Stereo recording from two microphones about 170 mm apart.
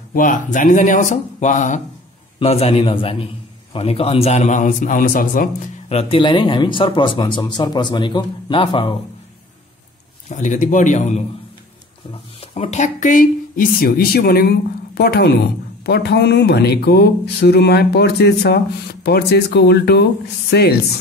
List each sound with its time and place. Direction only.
0.1 s a man's voice: 50° left (ahead or behind)
5.9 s speech: 35° left (ahead or behind)
10.4 s a man's voice: 45° left (ahead or behind)
12.4 s speech: 40° left (ahead or behind); by 20.7 s 80° left